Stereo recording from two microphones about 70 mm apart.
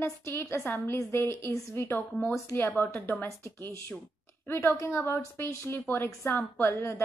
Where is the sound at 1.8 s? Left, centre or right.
Left.